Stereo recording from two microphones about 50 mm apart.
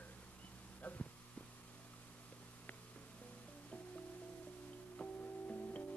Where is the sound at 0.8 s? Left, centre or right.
Left.